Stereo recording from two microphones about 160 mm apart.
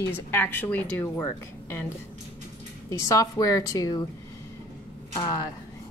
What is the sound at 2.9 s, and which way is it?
A woman's voice, 20° left (ahead or behind).